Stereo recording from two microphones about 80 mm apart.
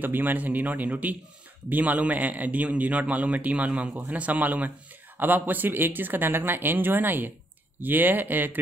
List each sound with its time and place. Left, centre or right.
0.0 s a man's voice: right